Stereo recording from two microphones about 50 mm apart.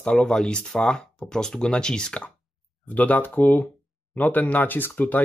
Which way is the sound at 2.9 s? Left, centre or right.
Left.